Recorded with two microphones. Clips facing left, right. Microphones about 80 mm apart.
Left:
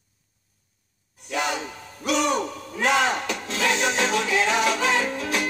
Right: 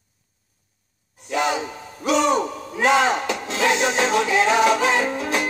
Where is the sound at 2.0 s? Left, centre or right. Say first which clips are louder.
Right 4 dB; centre.